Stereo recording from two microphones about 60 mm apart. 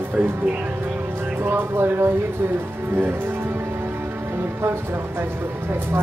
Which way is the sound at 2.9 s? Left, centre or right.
Right.